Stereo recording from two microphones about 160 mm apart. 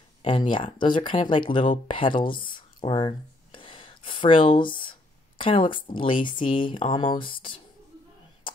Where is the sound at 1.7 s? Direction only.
30° left (ahead or behind).